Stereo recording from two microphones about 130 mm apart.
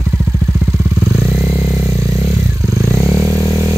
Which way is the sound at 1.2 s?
5° left (ahead or behind).